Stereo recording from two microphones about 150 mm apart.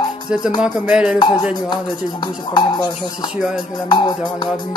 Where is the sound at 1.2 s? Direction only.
30° left (ahead or behind).